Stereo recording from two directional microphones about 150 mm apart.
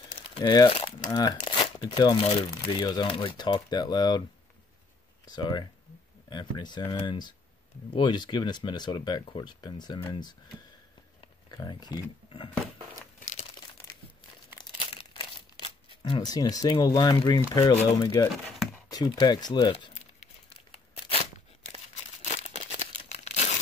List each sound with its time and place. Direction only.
0.4 s speech: 25° left (ahead or behind)
5.2 s speech: 30° left (ahead or behind)
11.5 s speech: 30° left (ahead or behind)
15.1 s a sound: 35° left (ahead or behind)
17.6 s speech: 30° left (ahead or behind)
22.2 s crumpling: 50° left (ahead or behind)